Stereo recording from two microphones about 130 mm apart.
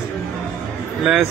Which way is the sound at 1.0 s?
5° right (ahead or behind).